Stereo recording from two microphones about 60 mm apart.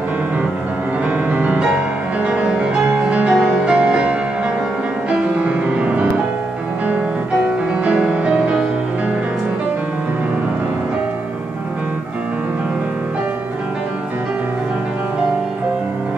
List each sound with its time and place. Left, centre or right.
1.0 s music: right
5.4 s music: centre
7.8 s music: centre